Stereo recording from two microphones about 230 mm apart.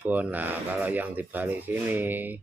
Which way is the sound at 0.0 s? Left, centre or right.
Centre.